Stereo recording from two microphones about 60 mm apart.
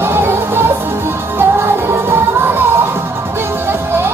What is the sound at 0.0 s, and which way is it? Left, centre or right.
Music, right.